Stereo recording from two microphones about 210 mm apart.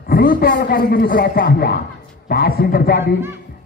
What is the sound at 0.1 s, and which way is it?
A man's voice, 40° left (ahead or behind).